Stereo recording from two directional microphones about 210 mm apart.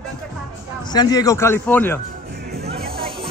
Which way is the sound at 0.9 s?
20° left (ahead or behind).